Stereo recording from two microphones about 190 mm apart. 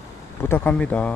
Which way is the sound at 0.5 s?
5° left (ahead or behind).